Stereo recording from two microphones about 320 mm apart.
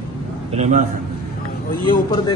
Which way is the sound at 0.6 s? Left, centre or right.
Right.